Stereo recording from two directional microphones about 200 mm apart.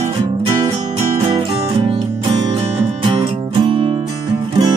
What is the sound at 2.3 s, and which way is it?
Music, 25° right (ahead or behind).